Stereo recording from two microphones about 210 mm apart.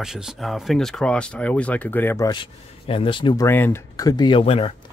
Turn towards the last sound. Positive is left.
turn(degrees=25)  # may be behind; listen again after turning